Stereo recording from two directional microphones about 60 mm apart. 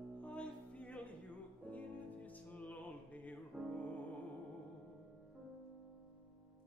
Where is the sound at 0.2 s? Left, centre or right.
Centre.